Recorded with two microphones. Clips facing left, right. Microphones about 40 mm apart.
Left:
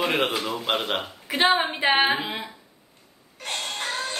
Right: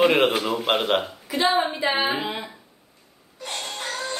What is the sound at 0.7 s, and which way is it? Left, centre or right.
Speech, centre.